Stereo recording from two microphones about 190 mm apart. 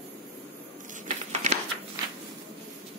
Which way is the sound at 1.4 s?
40° right (ahead or behind).